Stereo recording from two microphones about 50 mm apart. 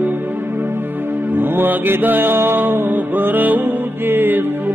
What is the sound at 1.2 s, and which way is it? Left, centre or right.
Music, right.